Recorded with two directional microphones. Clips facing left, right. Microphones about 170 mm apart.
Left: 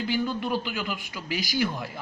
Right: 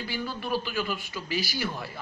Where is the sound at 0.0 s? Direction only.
20° left (ahead or behind).